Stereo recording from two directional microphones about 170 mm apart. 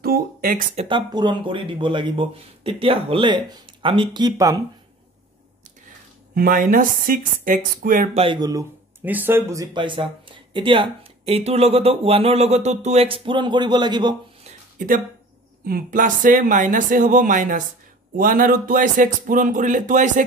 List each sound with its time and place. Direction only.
0.0 s speech: 60° right (ahead or behind)
0.7 s speech: 30° right (ahead or behind)
6.3 s speech: 60° right (ahead or behind)
8.1 s speech: 30° right (ahead or behind)
9.0 s speech: 10° right (ahead or behind); by 14.1 s 25° right (ahead or behind)
14.4 s a sound: 50° right (ahead or behind)
15.6 s speech: 55° right (ahead or behind)